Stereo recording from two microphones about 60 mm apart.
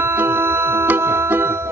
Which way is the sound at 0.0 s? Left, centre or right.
Right.